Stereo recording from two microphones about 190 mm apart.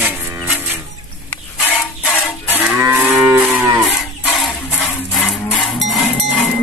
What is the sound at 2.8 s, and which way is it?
Moo, 10° right (ahead or behind).